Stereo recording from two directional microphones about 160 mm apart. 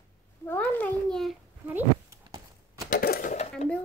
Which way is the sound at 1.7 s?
10° right (ahead or behind).